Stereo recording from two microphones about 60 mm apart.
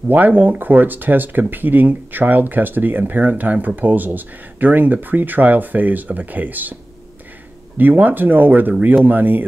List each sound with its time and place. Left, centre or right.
0.1 s speech: right